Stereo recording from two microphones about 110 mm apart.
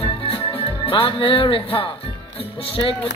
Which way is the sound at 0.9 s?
55° left (ahead or behind).